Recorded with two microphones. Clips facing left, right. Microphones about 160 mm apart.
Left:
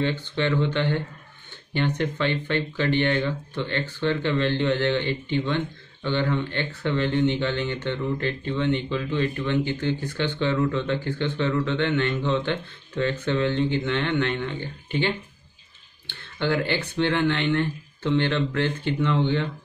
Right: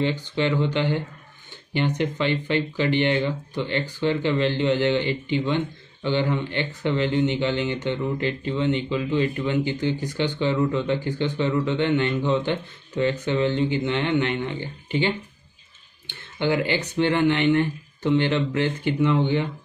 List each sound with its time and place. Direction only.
0.0 s speech: 15° right (ahead or behind)